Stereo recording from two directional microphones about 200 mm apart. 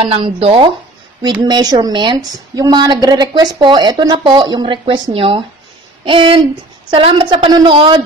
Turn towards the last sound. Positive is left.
turn(degrees=-25)  # may be behind; listen again after turning